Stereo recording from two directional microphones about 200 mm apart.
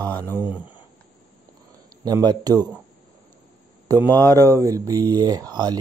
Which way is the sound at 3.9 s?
15° right (ahead or behind).